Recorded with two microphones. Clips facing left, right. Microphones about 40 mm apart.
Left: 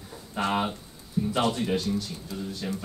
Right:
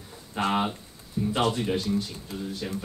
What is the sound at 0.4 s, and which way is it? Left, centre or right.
Speech, centre.